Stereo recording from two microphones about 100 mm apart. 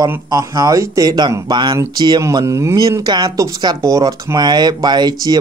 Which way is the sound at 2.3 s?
30° right (ahead or behind).